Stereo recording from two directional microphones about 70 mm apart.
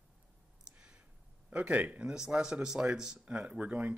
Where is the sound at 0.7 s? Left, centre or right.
Centre.